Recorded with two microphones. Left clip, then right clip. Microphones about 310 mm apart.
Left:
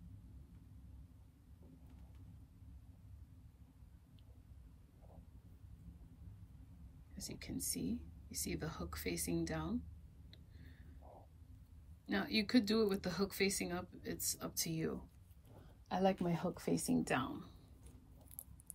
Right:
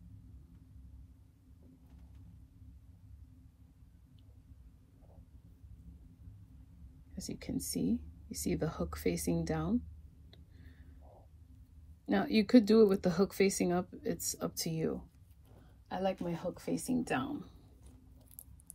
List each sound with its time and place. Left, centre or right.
7.2 s speech: centre
10.3 s a sound: centre
12.1 s speech: centre
15.9 s speech: centre